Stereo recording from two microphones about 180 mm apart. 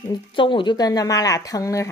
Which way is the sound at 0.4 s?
25° left (ahead or behind).